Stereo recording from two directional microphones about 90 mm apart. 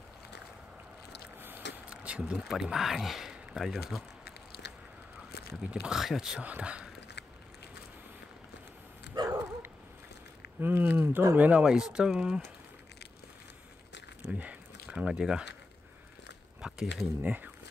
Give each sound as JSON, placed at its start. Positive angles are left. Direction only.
{"t": 1.4, "sound": "speech", "side_deg": -20}
{"t": 5.6, "sound": "speech", "side_deg": -10}
{"t": 6.4, "sound": "speech", "side_deg": -15}
{"t": 10.6, "sound": "speech", "side_deg": -20}
{"t": 14.2, "sound": "speech", "side_deg": -15}
{"t": 16.6, "sound": "speech", "side_deg": -5}
{"t": 17.2, "sound": "speech", "side_deg": -20}